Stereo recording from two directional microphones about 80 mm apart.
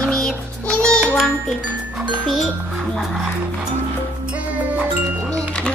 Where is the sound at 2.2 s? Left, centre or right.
Centre.